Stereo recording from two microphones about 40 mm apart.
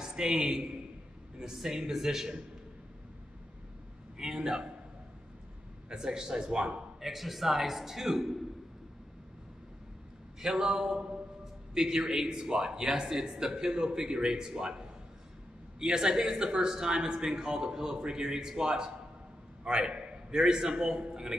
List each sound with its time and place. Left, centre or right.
0.0 s a man's voice: centre
4.2 s a man's voice: centre
5.9 s speech: centre
7.0 s a man's voice: centre
10.4 s a man's voice: centre